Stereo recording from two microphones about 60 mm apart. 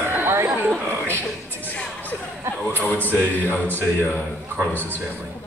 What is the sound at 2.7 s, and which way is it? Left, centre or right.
Speech, left.